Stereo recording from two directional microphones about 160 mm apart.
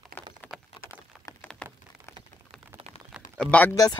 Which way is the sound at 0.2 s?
15° left (ahead or behind).